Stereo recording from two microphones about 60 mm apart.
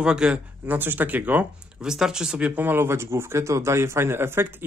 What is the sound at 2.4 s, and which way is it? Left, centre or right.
Speech, right.